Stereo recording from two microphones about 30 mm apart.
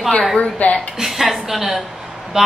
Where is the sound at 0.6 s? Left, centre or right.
Left.